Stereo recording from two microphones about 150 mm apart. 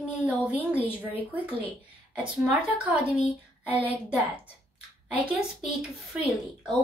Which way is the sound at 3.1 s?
45° left (ahead or behind).